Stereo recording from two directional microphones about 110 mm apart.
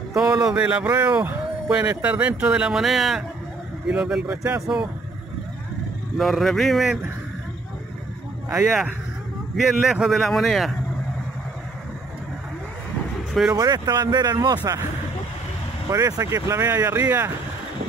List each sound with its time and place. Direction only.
0.1 s speech: 5° right (ahead or behind)
6.1 s speech: centre (ahead or behind)
8.5 s speech: 5° right (ahead or behind)
13.3 s speech: 5° right (ahead or behind)
13.6 s speech: 35° right (ahead or behind)
15.9 s speech: 30° right (ahead or behind)